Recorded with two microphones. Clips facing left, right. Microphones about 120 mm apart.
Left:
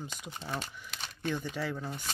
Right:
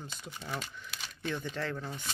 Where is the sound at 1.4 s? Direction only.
5° left (ahead or behind).